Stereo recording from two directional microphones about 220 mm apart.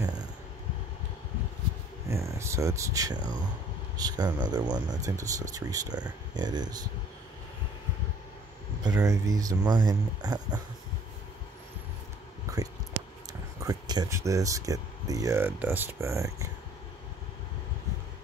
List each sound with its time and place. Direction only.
2.0 s speech: 15° right (ahead or behind)
8.8 s speech: 15° right (ahead or behind)
13.3 s speech: 15° right (ahead or behind)